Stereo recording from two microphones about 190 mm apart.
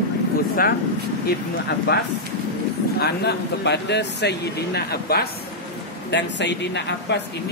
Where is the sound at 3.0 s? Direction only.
60° left (ahead or behind).